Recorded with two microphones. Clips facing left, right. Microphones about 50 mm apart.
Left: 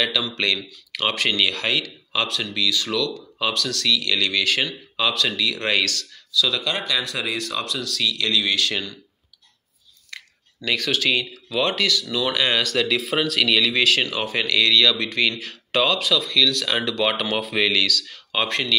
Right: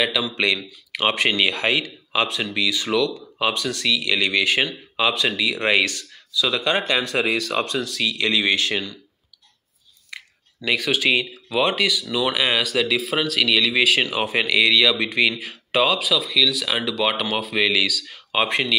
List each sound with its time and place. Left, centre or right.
0.0 s speech: centre; by 7.8 s right
7.8 s speech: right
10.1 s speech: centre